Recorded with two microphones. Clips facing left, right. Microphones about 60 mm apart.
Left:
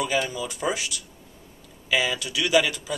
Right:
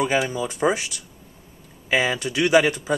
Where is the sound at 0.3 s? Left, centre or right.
Right.